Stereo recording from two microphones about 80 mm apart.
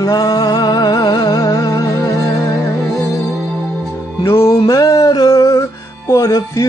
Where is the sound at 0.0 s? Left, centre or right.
Left.